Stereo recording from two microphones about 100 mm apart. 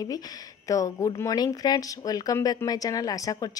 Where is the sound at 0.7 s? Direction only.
35° left (ahead or behind).